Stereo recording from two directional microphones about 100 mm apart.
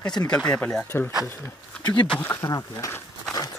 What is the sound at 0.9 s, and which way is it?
Speech, 25° left (ahead or behind).